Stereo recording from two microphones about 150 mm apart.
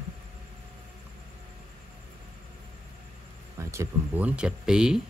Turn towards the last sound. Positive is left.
turn(degrees=-5)  # may be behind; listen again after turning